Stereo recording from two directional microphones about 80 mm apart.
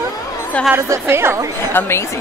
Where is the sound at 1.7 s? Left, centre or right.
Left.